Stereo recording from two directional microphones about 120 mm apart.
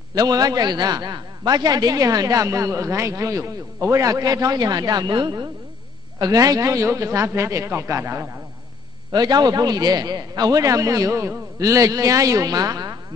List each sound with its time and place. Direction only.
0.1 s a man's voice: 30° right (ahead or behind)
9.1 s a man's voice: 35° right (ahead or behind)